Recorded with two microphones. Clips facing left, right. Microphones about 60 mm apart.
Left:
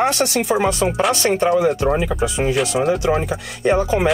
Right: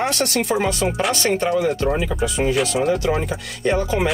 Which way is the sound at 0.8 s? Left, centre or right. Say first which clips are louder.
Left 3 dB; centre.